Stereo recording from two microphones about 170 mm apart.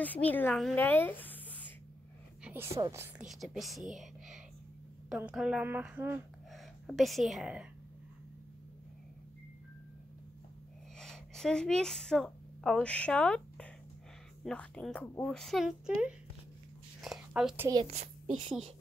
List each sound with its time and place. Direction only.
0.0 s speech: 10° left (ahead or behind)
2.4 s a woman's voice: 15° right (ahead or behind)
3.3 s a woman's voice: centre (ahead or behind)
11.0 s a woman's voice: 5° left (ahead or behind)
17.0 s a sound: centre (ahead or behind)
17.8 s a child's voice: 35° right (ahead or behind)